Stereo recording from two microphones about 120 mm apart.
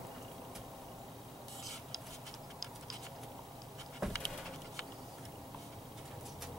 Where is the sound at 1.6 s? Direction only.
Centre (ahead or behind).